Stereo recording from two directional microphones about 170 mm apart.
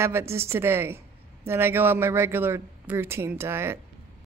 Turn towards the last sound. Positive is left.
turn(degrees=-15)  # may be behind; listen again after turning